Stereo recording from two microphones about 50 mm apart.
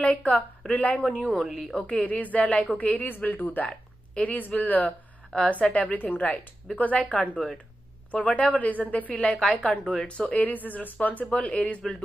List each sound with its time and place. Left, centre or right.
0.0 s speech: left
1.2 s speech: centre
1.7 s speech: left
3.6 s speech: left
5.3 s speech: left
8.4 s speech: left